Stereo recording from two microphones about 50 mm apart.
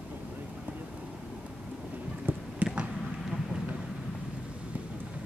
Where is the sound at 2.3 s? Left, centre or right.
Right.